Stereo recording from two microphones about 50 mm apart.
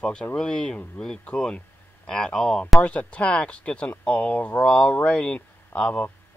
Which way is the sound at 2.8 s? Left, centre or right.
Left.